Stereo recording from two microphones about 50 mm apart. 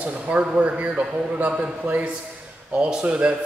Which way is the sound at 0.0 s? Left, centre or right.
Right.